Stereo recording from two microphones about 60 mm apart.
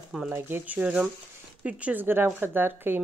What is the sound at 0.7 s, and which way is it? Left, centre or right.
Speech, right.